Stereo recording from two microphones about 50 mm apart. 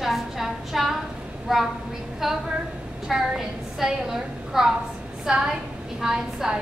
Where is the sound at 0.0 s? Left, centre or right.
Centre.